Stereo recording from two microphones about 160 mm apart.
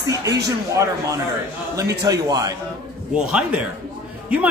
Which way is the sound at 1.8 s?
25° right (ahead or behind).